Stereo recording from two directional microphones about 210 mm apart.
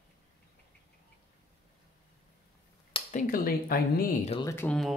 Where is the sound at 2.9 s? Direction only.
40° left (ahead or behind).